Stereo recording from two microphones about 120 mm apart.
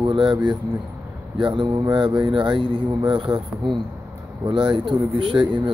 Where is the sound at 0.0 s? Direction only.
40° right (ahead or behind).